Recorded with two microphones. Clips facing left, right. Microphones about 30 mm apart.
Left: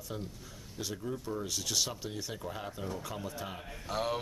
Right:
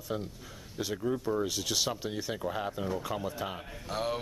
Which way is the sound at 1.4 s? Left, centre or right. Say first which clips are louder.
Right 3 dB; centre.